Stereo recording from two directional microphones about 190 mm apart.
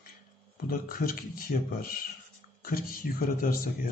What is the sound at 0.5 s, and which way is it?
Speech, 50° left (ahead or behind).